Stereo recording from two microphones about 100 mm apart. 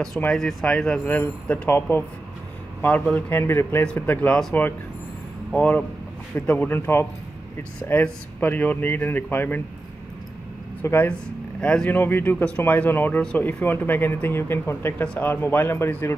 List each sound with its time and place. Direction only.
0.3 s speech: 5° left (ahead or behind)
5.6 s speech: 15° left (ahead or behind)
10.8 s speech: 20° left (ahead or behind)